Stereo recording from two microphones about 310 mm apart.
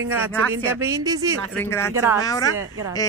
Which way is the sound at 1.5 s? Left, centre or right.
Centre.